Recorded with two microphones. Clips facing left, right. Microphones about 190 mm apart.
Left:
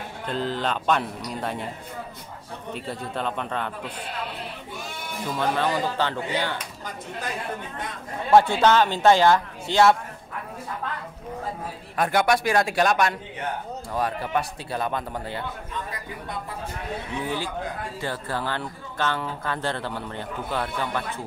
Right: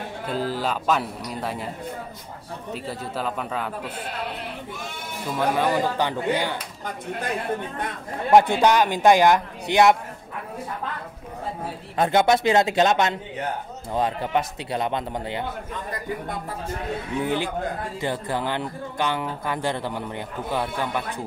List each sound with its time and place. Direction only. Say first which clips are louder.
0.3 s speech: right 1 dB; 5° right (ahead or behind)
2.7 s speech: even; centre (ahead or behind)
5.3 s speech: right 3 dB; 10° right (ahead or behind)
8.3 s speech: right 1 dB; 15° right (ahead or behind)
12.0 s a man's voice: right 3 dB; 20° right (ahead or behind)
17.2 s speech: right 5 dB; 20° right (ahead or behind)